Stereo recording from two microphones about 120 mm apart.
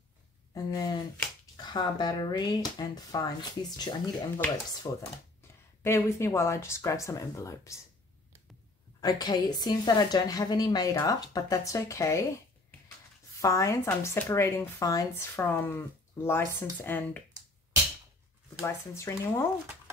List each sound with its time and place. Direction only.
0.7 s a woman's voice: 30° left (ahead or behind)
5.8 s speech: 20° left (ahead or behind)
9.0 s a woman's voice: 35° left (ahead or behind)
13.4 s speech: 25° left (ahead or behind)
18.6 s speech: 25° left (ahead or behind)